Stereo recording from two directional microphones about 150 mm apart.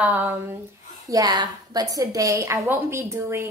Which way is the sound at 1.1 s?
25° right (ahead or behind).